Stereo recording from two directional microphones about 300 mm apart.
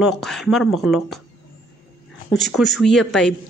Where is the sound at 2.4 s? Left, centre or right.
Centre.